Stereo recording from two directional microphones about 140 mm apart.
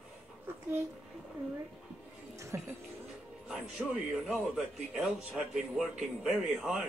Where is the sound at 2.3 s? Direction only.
20° right (ahead or behind).